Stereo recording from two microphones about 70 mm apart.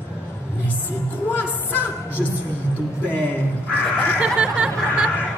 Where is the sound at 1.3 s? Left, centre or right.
Left.